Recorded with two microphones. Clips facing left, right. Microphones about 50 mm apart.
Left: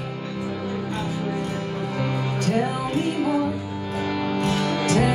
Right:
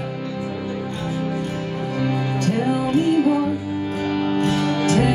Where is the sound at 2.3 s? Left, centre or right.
Right.